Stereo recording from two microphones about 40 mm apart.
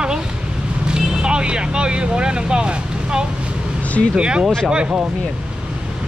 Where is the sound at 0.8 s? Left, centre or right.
Right.